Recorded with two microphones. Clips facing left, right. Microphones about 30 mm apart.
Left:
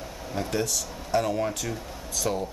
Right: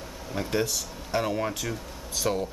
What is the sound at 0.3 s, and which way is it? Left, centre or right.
Speech, centre.